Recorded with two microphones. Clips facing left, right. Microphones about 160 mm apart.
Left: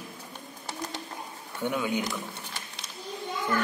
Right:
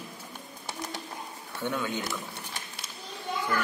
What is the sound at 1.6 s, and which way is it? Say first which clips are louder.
Speech: left 3 dB; 10° left (ahead or behind).